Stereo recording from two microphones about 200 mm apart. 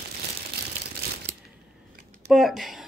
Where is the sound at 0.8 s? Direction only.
35° right (ahead or behind).